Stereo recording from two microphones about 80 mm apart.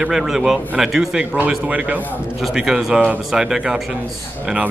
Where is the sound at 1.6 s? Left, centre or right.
Centre.